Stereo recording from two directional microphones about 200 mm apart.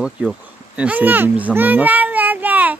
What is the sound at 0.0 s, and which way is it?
Speech, 5° right (ahead or behind).